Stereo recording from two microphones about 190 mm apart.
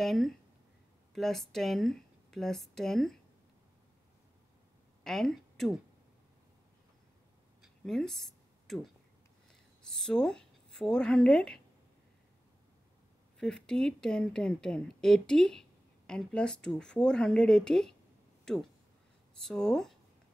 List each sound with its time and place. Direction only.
0.0 s speech: centre (ahead or behind)
5.0 s a woman's voice: centre (ahead or behind)
7.6 s a sound: centre (ahead or behind)
9.8 s speech: 5° left (ahead or behind)
13.4 s speech: 5° left (ahead or behind)
18.4 s a sound: centre (ahead or behind)
19.4 s speech: 5° left (ahead or behind)